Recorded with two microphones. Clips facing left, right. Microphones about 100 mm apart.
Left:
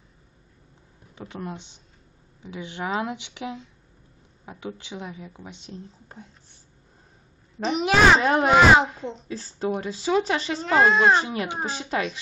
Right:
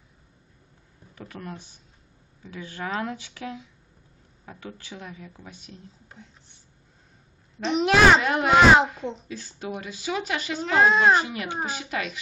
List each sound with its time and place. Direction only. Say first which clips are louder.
1.1 s speech: left 3 dB; 20° left (ahead or behind)
7.6 s a child's voice: even; centre (ahead or behind)
8.2 s speech: left 4 dB; 35° left (ahead or behind)
8.5 s a child's voice: right 1 dB; centre (ahead or behind)
9.3 s speech: left 6 dB; 35° left (ahead or behind)
10.6 s a child's voice: even; centre (ahead or behind)
11.1 s speech: left 1 dB; 30° left (ahead or behind)